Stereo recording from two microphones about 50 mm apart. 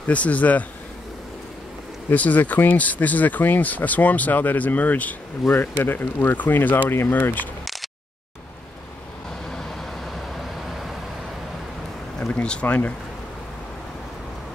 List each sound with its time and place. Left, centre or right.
0.0 s speech: left
2.1 s speech: left
5.5 s speech: left
9.5 s vehicle: centre
12.3 s speech: left
12.6 s speech: left